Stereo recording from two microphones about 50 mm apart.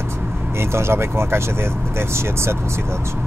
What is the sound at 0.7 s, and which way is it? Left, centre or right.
Speech, right.